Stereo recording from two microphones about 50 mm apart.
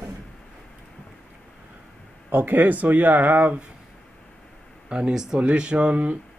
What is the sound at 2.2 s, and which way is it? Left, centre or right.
Speech, right.